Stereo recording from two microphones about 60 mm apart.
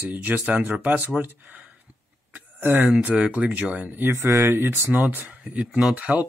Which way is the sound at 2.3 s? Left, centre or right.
Right.